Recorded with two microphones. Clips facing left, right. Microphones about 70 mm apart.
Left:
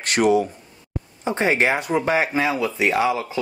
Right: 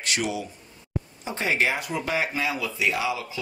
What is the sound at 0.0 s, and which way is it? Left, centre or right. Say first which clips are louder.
Speech: left 10 dB; left.